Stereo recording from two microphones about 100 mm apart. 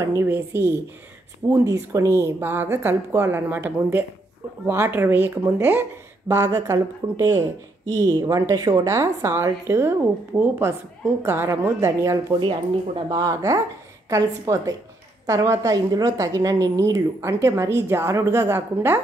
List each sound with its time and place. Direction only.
0.0 s a woman's voice: 30° right (ahead or behind)
11.2 s a woman's voice: 25° right (ahead or behind)
12.4 s speech: 60° right (ahead or behind)
13.1 s a woman's voice: 35° right (ahead or behind)